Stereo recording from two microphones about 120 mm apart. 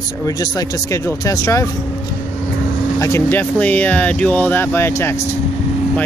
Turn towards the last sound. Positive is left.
turn(degrees=20)  # may be behind; listen again after turning